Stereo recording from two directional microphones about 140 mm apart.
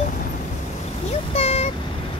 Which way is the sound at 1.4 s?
45° left (ahead or behind).